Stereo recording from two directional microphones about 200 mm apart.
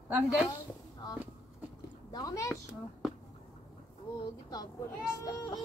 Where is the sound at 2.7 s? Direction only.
5° right (ahead or behind).